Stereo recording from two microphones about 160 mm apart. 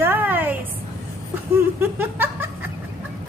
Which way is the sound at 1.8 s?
15° right (ahead or behind).